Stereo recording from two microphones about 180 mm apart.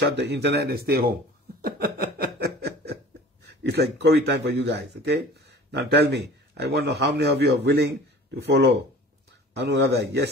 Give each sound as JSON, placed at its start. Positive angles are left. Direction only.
{"t": 0.0, "sound": "speech", "side_deg": -70}
{"t": 1.6, "sound": "snicker", "side_deg": -60}
{"t": 3.4, "sound": "speech", "side_deg": -65}